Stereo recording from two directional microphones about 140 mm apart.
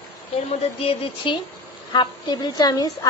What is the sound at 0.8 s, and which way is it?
A woman's voice, 40° left (ahead or behind).